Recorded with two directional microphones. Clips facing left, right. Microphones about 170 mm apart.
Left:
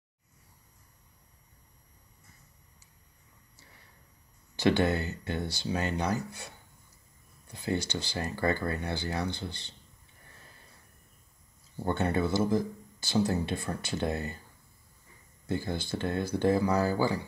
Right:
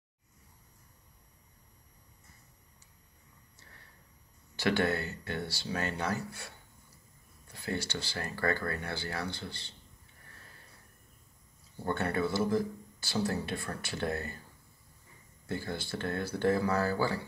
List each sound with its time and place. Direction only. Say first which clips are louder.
4.6 s speech: left 4 dB; 20° left (ahead or behind)
7.5 s speech: left 4 dB; 20° left (ahead or behind)
11.8 s speech: left 3 dB; 20° left (ahead or behind)
15.4 s speech: left 4 dB; 20° left (ahead or behind)